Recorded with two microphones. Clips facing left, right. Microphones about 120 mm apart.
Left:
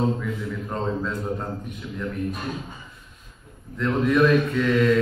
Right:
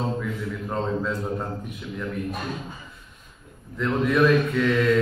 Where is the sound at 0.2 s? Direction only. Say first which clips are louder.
Even; centre (ahead or behind).